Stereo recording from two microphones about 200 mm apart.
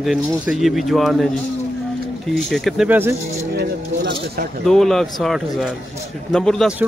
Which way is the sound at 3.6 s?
50° right (ahead or behind).